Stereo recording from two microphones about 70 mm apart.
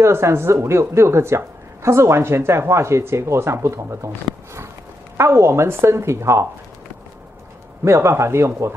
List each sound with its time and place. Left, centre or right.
0.0 s a woman's voice: right
5.1 s a woman's voice: right
7.8 s a woman's voice: right